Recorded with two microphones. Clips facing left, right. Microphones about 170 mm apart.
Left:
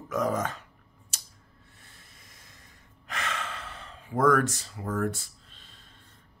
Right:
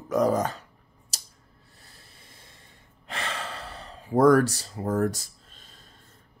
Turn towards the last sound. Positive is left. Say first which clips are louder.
# right 2 dB
turn(degrees=-40)  # may be behind; listen again after turning